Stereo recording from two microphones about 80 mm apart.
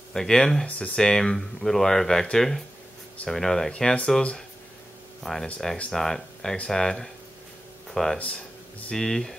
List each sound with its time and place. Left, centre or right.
0.1 s speech: centre
5.2 s speech: centre
8.2 s a sound: centre
9.0 s speech: centre